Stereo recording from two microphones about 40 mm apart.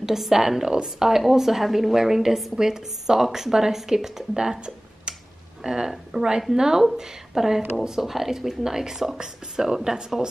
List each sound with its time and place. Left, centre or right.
0.0 s a woman's voice: centre
4.6 s a sound: right
5.6 s a woman's voice: centre